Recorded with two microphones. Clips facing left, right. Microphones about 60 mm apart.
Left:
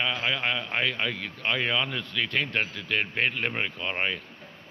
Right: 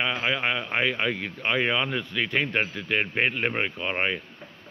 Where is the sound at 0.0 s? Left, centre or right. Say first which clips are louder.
Right 2 dB; centre.